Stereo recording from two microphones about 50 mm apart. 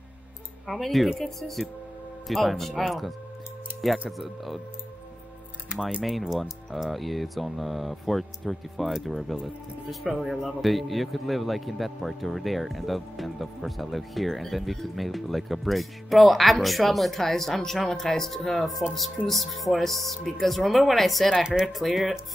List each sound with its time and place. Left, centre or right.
0.7 s speech: centre
5.9 s speech: centre
21.4 s speech: centre
21.7 s speech: centre